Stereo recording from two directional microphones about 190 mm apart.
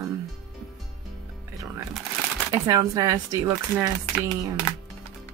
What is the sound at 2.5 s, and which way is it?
Speech, 15° right (ahead or behind).